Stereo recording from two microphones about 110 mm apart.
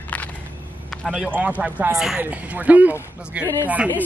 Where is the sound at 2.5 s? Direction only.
15° right (ahead or behind).